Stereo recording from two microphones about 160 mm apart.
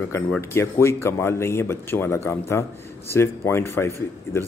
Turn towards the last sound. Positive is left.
turn(degrees=15)  # may be behind; listen again after turning